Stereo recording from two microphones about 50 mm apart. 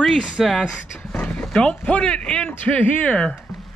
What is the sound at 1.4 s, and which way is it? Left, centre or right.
Speech, centre.